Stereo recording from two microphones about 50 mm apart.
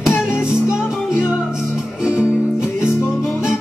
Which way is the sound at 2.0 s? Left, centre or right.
Centre.